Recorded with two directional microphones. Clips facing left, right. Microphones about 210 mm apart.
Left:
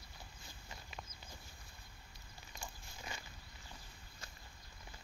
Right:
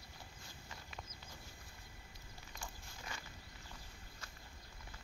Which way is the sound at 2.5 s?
20° left (ahead or behind).